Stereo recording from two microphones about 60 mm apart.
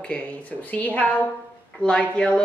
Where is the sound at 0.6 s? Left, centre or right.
Left.